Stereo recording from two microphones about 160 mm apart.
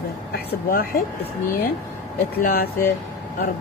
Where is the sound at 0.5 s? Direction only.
65° left (ahead or behind).